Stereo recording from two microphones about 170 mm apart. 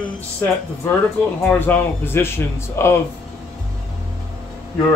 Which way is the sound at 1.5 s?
15° left (ahead or behind).